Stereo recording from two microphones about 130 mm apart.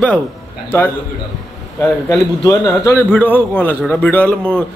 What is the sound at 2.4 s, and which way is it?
Speech, 25° left (ahead or behind).